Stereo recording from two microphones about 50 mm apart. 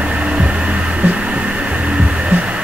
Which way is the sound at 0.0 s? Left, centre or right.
Right.